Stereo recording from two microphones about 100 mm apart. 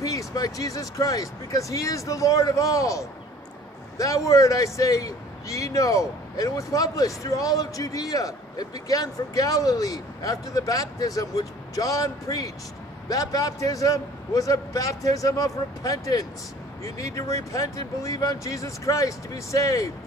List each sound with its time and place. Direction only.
0.0 s speech: 35° left (ahead or behind)